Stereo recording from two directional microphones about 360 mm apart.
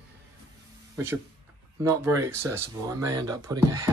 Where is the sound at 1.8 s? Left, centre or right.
Centre.